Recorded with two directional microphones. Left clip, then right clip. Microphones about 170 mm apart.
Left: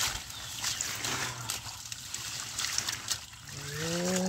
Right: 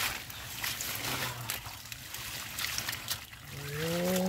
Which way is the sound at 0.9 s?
60° right (ahead or behind).